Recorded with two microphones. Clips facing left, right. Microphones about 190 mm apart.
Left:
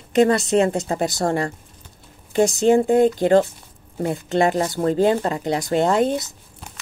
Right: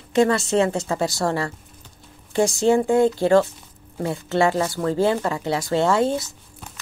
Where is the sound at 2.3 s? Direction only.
20° left (ahead or behind).